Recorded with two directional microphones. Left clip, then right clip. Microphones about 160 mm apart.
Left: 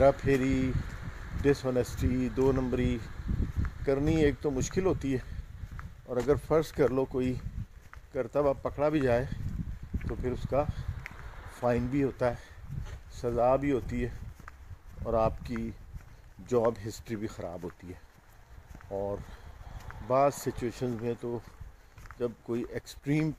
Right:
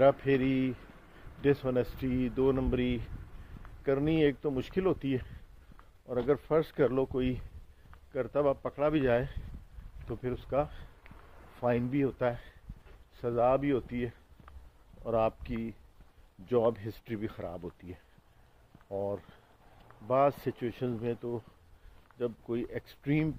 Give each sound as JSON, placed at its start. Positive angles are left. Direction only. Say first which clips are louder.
{"t": 0.0, "sound": "speech", "louder": "left 1 dB", "side_deg": 20}